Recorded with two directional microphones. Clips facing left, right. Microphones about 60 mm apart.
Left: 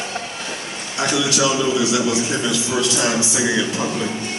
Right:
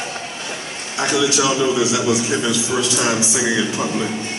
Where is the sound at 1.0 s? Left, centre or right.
Right.